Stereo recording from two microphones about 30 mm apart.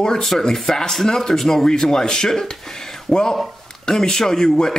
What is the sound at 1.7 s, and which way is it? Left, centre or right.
Speech, left.